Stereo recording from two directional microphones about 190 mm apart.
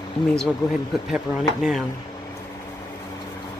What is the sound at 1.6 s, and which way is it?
Speech, centre (ahead or behind).